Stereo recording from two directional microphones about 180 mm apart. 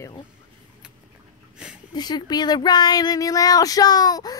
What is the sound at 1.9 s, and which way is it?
Speech, 25° left (ahead or behind).